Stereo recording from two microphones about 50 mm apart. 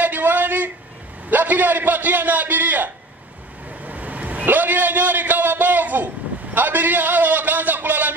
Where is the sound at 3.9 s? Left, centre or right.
Right.